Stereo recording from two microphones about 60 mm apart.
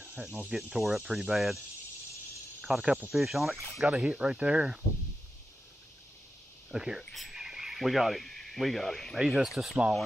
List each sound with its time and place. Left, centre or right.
0.1 s speech: centre
2.7 s speech: centre
3.8 s speech: centre
6.7 s speech: centre